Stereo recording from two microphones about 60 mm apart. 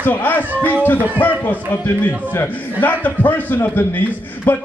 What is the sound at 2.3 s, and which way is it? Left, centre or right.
A man's voice, left.